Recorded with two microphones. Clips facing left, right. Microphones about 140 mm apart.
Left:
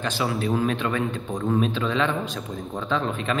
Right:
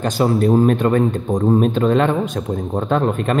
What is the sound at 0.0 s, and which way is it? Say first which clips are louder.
A man's voice: right 9 dB; 45° right (ahead or behind).